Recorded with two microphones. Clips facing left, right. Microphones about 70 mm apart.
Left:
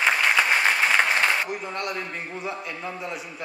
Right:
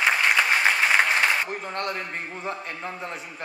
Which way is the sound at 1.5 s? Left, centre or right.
Right.